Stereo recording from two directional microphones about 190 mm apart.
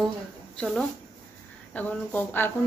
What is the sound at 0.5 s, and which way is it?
Speech, centre (ahead or behind).